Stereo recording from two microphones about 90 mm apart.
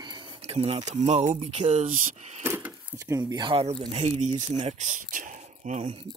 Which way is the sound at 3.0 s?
40° right (ahead or behind).